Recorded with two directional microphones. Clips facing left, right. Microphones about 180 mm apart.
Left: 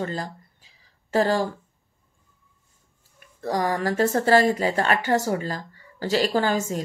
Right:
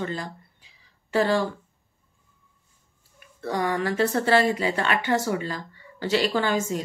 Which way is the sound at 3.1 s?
40° left (ahead or behind).